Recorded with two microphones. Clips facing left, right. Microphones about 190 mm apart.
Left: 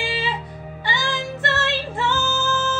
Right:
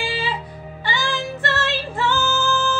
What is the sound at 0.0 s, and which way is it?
Music, 20° left (ahead or behind).